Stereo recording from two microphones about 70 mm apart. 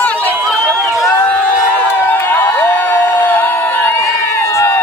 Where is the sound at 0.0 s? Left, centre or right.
Left.